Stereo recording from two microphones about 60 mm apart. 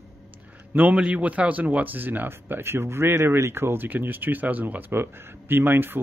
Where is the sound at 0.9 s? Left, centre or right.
Centre.